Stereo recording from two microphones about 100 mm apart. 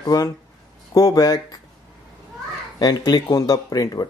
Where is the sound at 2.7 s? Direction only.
40° left (ahead or behind).